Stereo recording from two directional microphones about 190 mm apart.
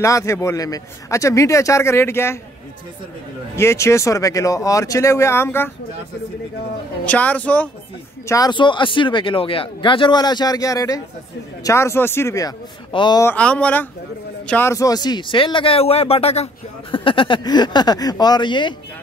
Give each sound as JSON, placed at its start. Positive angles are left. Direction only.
{"t": 0.0, "sound": "a man's voice", "side_deg": 15}
{"t": 3.5, "sound": "a man's voice", "side_deg": 15}
{"t": 7.1, "sound": "a man's voice", "side_deg": 5}
{"t": 8.3, "sound": "a man's voice", "side_deg": 20}
{"t": 13.2, "sound": "a man's voice", "side_deg": 10}